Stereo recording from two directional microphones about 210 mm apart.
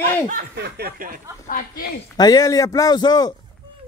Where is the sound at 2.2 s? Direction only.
20° left (ahead or behind).